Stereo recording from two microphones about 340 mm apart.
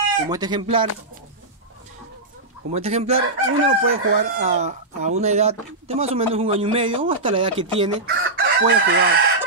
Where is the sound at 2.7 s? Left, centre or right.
Centre.